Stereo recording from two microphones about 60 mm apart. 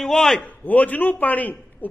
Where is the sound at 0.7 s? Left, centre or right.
Left.